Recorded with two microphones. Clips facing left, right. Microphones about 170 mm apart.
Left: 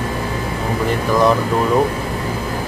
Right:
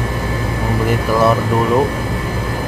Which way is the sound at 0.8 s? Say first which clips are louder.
Right 1 dB; 5° right (ahead or behind).